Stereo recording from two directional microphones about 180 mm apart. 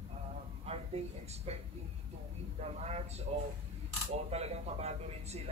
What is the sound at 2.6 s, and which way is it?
Speech, 35° right (ahead or behind).